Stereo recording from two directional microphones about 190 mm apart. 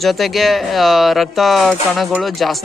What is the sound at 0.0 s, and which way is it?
Speech, centre (ahead or behind).